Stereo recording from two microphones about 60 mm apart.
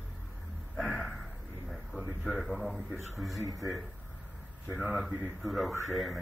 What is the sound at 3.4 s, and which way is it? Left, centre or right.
Speech, right.